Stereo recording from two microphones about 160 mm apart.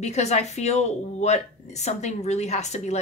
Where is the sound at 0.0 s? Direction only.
45° left (ahead or behind).